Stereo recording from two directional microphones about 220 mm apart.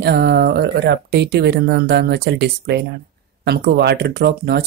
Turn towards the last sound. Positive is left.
turn(degrees=-45)  # may be behind; listen again after turning